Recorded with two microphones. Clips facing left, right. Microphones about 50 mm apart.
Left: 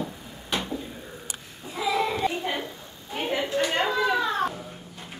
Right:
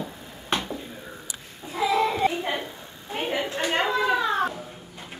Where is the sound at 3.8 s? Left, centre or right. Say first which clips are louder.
Right 3 dB; centre.